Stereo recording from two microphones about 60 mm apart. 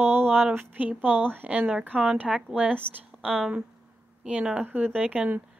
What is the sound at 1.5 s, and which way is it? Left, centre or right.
Speech, centre.